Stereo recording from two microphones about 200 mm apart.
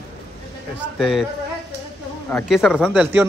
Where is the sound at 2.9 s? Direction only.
10° right (ahead or behind).